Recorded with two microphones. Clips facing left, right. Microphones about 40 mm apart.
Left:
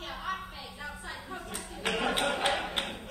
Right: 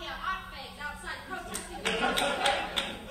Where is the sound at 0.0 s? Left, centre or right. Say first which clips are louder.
Right 1 dB; centre.